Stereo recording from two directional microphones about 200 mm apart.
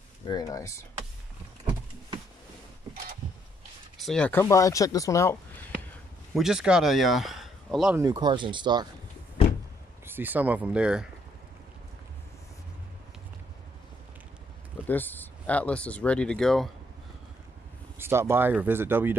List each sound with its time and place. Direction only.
0.3 s speech: 20° left (ahead or behind)
4.0 s speech: 5° left (ahead or behind)
6.3 s speech: 5° right (ahead or behind)
8.0 s speech: 20° right (ahead or behind)
10.0 s speech: 10° right (ahead or behind)
14.9 s speech: 10° left (ahead or behind)
17.9 s speech: 10° right (ahead or behind)